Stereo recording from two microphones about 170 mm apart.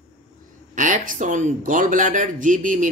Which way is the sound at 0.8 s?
50° right (ahead or behind).